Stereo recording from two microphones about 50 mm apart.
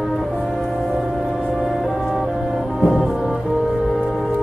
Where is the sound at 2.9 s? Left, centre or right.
Centre.